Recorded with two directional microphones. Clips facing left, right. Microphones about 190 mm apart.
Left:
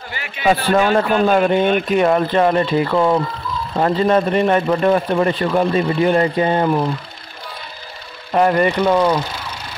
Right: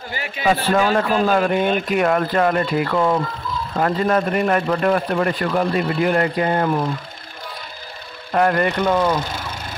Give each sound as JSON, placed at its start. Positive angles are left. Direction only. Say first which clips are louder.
{"t": 0.5, "sound": "speech", "louder": "left 3 dB", "side_deg": 25}
{"t": 8.4, "sound": "speech", "louder": "left 3 dB", "side_deg": 15}